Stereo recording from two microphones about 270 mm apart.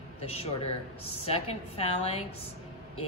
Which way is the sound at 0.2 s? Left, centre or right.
Left.